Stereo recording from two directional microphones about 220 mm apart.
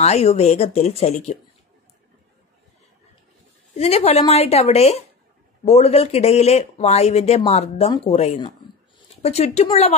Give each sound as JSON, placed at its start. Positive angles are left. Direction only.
{"t": 0.0, "sound": "speech", "side_deg": 30}
{"t": 3.7, "sound": "speech", "side_deg": 30}